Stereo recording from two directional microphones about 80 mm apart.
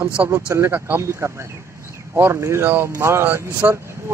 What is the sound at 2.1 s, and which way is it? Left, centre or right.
Speech, right.